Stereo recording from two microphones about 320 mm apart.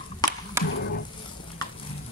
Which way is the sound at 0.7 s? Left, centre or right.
Left.